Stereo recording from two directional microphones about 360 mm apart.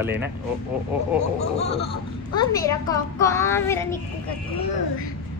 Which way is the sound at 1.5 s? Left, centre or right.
Centre.